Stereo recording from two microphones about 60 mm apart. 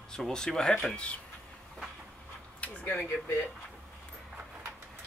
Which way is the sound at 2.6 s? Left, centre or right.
Left.